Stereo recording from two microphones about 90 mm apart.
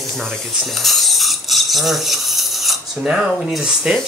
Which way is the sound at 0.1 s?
5° left (ahead or behind).